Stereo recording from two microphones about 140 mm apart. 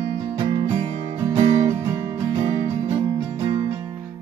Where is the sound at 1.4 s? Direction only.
40° right (ahead or behind).